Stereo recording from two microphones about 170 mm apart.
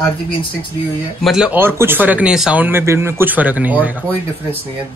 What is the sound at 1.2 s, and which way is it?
Speech, 5° right (ahead or behind).